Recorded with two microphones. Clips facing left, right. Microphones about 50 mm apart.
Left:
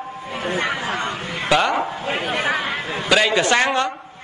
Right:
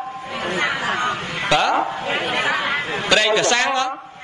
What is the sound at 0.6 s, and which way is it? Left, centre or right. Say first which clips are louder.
Speech: right 3 dB; right.